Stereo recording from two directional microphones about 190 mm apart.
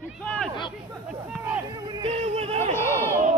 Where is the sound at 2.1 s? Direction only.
35° right (ahead or behind).